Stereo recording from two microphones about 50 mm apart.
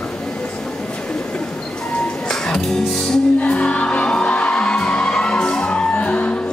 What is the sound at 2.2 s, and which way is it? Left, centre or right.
Music, centre.